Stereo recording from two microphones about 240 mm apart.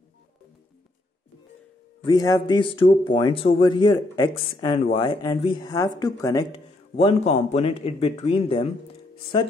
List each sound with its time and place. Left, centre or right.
2.0 s speech: centre